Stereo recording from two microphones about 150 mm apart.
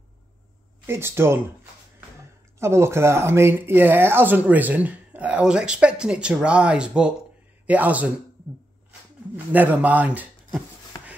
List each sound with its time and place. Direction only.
0.8 s speech: 15° right (ahead or behind)
2.6 s speech: 15° right (ahead or behind)
9.5 s speech: 10° right (ahead or behind)